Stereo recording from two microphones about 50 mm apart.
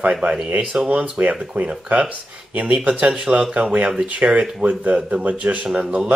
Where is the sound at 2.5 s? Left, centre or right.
Right.